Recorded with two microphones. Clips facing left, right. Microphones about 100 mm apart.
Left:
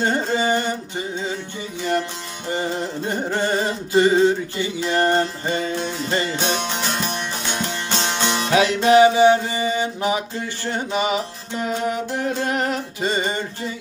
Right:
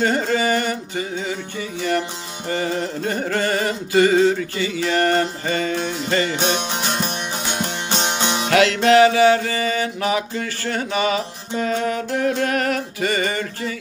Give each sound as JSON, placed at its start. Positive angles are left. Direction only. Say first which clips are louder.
{"t": 0.0, "sound": "carnatic music", "louder": "right 1 dB", "side_deg": 20}
{"t": 1.8, "sound": "music", "louder": "even", "side_deg": 20}
{"t": 2.5, "sound": "mantra", "louder": "right 1 dB", "side_deg": 20}
{"t": 6.7, "sound": "music", "louder": "right 1 dB", "side_deg": -10}
{"t": 8.5, "sound": "music", "louder": "right 1 dB", "side_deg": 15}
{"t": 9.2, "sound": "mantra", "louder": "even", "side_deg": 20}